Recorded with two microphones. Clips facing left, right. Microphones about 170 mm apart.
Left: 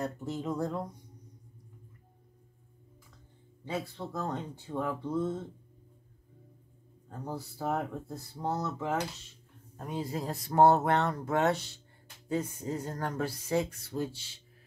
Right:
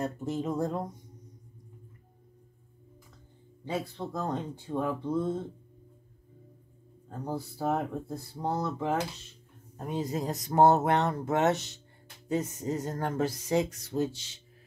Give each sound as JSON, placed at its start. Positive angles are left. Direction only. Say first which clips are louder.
{"t": 0.0, "sound": "speech", "louder": "right 3 dB", "side_deg": -20}
{"t": 4.1, "sound": "speech", "louder": "right 2 dB", "side_deg": -15}
{"t": 7.2, "sound": "speech", "louder": "right 3 dB", "side_deg": -15}